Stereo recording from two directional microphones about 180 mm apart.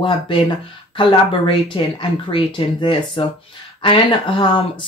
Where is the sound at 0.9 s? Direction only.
25° left (ahead or behind).